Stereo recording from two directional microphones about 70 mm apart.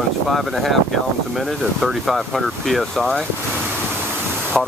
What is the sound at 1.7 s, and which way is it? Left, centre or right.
Speech, centre.